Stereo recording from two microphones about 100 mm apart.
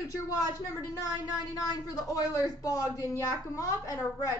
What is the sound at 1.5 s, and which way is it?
Speech, 40° left (ahead or behind).